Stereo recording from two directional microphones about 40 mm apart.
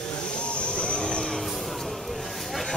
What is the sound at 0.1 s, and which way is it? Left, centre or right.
Vehicle, left.